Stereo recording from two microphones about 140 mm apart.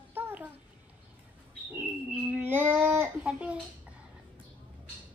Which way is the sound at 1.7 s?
15° right (ahead or behind).